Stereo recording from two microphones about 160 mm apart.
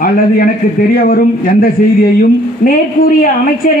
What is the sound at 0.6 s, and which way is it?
A woman's voice, 65° left (ahead or behind).